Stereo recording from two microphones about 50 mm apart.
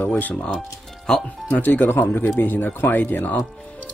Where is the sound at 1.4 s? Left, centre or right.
Left.